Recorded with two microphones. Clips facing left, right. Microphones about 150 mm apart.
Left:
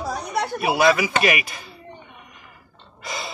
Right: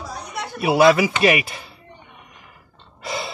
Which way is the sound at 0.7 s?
25° right (ahead or behind).